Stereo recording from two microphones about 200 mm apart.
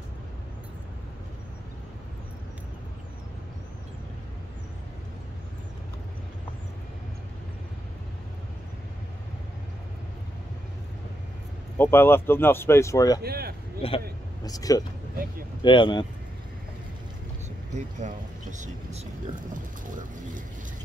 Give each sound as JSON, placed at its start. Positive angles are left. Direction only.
{"t": 11.8, "sound": "speech", "side_deg": 10}
{"t": 13.2, "sound": "speech", "side_deg": -50}
{"t": 13.8, "sound": "speech", "side_deg": 30}
{"t": 18.0, "sound": "speech", "side_deg": -35}
{"t": 19.5, "sound": "speech", "side_deg": -40}